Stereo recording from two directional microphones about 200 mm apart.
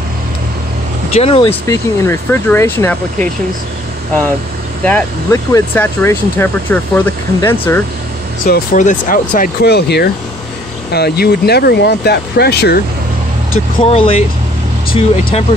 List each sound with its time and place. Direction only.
1.1 s speech: 30° left (ahead or behind)
1.7 s speech: 10° left (ahead or behind)
4.8 s speech: 10° left (ahead or behind)
8.5 s speech: 40° left (ahead or behind)
13.8 s speech: 30° left (ahead or behind)